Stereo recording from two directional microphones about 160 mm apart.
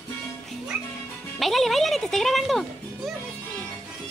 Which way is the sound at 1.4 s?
Centre (ahead or behind).